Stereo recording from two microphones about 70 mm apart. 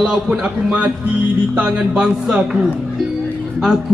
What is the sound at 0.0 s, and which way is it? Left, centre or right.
Music, centre.